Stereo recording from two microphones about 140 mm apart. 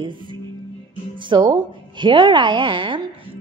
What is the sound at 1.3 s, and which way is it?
A woman's voice, 35° right (ahead or behind).